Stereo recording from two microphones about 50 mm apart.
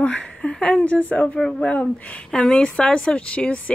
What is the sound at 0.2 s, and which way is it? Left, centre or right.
A woman's voice, centre.